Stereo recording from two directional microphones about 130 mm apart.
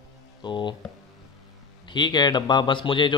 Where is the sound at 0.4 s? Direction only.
35° left (ahead or behind).